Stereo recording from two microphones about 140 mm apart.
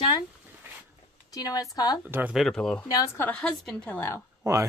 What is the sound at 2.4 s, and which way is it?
Speech, 5° left (ahead or behind).